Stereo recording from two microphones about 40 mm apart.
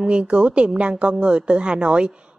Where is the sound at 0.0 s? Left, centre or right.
Right.